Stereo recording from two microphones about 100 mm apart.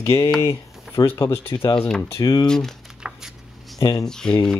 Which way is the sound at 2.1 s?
40° left (ahead or behind).